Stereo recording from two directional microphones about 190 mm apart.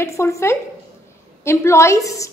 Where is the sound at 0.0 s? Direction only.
15° left (ahead or behind).